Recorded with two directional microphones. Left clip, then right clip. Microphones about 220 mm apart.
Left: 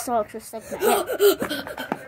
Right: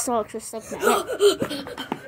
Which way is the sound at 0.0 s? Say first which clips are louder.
Even; centre (ahead or behind).